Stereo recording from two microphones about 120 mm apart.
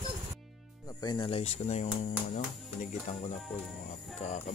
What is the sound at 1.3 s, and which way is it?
Speech, 55° left (ahead or behind).